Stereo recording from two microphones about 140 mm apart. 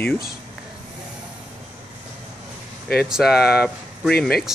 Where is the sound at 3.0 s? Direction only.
5° right (ahead or behind).